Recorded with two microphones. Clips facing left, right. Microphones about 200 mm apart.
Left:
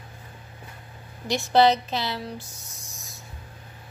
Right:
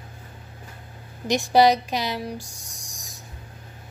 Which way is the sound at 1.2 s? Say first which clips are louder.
Right 2 dB; 15° right (ahead or behind).